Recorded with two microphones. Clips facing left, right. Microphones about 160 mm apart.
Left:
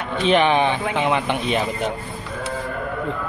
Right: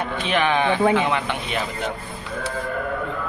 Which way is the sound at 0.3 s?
20° left (ahead or behind).